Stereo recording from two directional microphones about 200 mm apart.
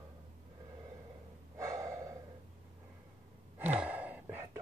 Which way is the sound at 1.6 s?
15° right (ahead or behind).